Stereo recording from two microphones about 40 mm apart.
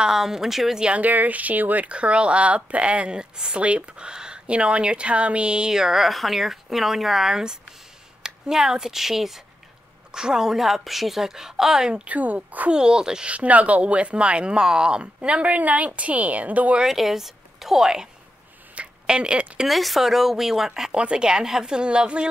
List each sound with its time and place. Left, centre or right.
0.1 s a woman's voice: centre
0.9 s speech: right
1.9 s speech: right; by 6.0 s centre
6.0 s a woman's voice: centre
12.1 s a woman's voice: right
12.7 s speech: centre
13.3 s speech: right
15.1 s a woman's voice: right
16.8 s speech: centre
19.0 s speech: right
19.7 s a woman's voice: centre
20.9 s speech: right